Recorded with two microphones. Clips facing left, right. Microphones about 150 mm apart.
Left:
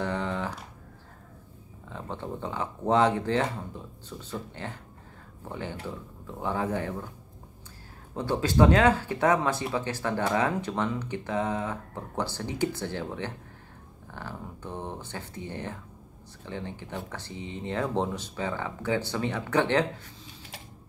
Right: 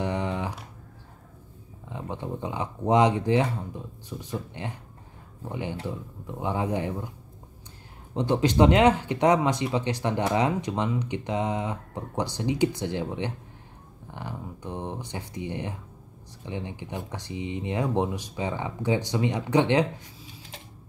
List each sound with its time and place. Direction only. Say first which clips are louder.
0.0 s a sound: right 1 dB; 15° right (ahead or behind)
1.9 s speech: right 2 dB; 15° right (ahead or behind)
8.1 s speech: right 4 dB; 20° right (ahead or behind)